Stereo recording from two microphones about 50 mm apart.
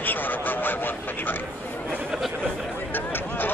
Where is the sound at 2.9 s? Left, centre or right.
Left.